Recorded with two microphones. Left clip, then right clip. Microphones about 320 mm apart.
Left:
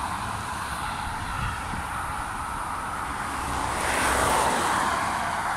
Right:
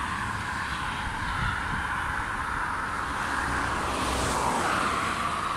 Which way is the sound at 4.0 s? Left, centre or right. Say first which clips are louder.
Left 8 dB; left.